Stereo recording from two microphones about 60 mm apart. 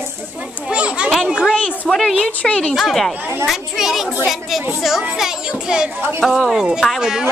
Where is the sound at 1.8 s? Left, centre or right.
Centre.